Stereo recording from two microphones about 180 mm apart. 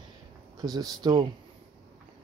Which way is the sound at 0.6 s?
20° right (ahead or behind).